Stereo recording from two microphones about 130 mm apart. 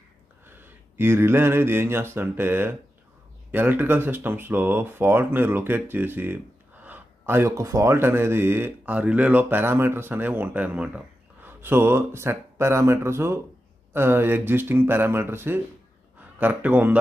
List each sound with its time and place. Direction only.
0.5 s speech: 15° right (ahead or behind)